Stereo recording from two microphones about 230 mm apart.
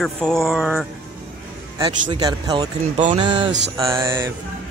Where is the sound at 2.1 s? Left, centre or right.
Centre.